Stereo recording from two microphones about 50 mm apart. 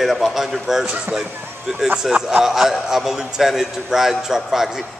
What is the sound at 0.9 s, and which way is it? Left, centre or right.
Speech, centre.